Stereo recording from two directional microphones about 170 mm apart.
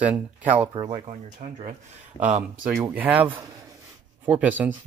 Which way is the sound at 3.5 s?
20° right (ahead or behind).